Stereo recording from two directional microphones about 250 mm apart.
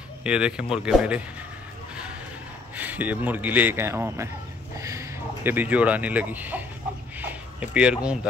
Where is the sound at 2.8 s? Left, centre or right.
Centre.